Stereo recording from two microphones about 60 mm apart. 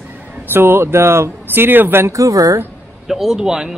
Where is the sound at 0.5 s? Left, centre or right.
Right.